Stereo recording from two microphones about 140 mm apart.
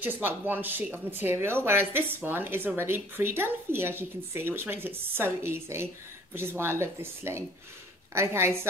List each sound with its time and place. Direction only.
0.0 s a woman's voice: 15° right (ahead or behind)